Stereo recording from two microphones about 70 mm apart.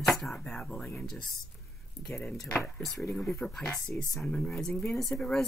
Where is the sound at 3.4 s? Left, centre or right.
Centre.